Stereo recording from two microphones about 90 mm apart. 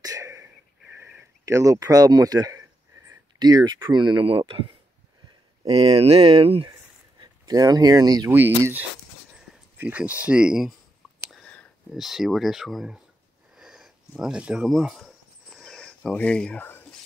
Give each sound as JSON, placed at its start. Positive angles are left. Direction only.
{"t": 0.0, "sound": "wheeze", "side_deg": -40}
{"t": 1.4, "sound": "speech", "side_deg": -35}
{"t": 5.7, "sound": "speech", "side_deg": -90}
{"t": 7.2, "sound": "speech", "side_deg": -45}
{"t": 8.3, "sound": "speech", "side_deg": -25}
{"t": 11.9, "sound": "speech", "side_deg": -5}
{"t": 13.6, "sound": "a sound", "side_deg": -5}
{"t": 14.7, "sound": "cricket", "side_deg": 0}